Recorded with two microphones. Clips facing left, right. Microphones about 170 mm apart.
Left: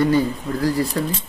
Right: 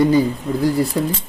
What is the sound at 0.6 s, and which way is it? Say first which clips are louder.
Speech: right 3 dB; 20° right (ahead or behind).